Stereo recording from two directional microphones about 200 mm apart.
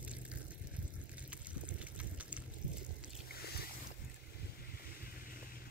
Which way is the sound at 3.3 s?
50° left (ahead or behind).